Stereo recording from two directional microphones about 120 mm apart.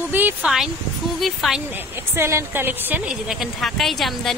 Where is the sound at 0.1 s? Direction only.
15° right (ahead or behind).